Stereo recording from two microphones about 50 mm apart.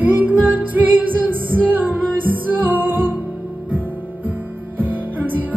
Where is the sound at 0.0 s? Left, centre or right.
Right.